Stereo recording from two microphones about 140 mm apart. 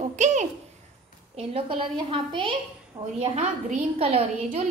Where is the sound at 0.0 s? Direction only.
60° right (ahead or behind).